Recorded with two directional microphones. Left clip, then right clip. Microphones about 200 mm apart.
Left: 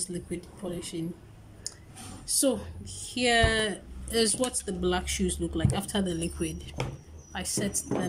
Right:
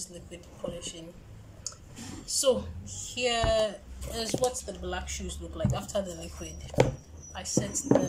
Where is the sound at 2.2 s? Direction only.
40° left (ahead or behind).